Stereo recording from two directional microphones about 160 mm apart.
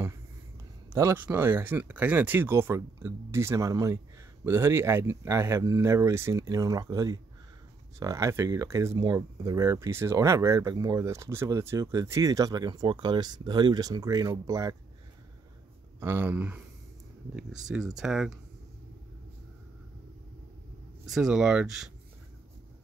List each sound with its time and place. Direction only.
0.9 s speech: 15° right (ahead or behind)
16.0 s speech: 15° right (ahead or behind)
21.1 s speech: 5° right (ahead or behind)